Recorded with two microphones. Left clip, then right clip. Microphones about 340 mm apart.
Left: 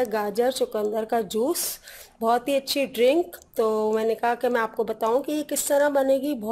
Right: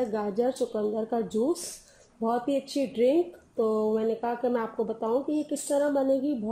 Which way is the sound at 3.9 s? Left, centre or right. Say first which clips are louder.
Left 5 dB; left.